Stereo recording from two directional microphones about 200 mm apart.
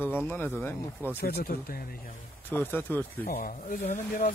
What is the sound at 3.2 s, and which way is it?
Speech, 45° left (ahead or behind).